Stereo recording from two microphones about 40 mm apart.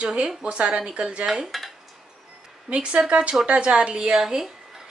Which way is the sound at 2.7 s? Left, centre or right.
Right.